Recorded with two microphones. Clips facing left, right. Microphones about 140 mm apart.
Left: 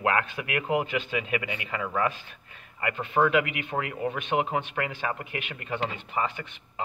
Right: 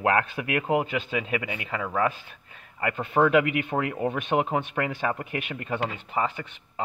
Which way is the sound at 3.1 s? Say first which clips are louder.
Right 3 dB; 40° right (ahead or behind).